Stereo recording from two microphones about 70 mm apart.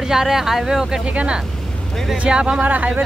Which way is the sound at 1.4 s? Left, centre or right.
Centre.